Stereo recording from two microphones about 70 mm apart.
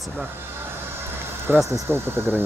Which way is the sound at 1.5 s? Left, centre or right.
Right.